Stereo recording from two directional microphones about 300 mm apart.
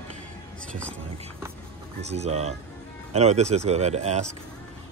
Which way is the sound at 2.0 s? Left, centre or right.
Right.